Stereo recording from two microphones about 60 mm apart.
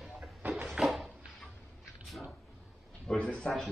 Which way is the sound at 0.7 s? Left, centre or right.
Centre.